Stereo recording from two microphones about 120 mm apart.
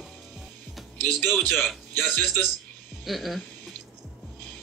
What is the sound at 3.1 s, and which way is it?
Speech, centre (ahead or behind).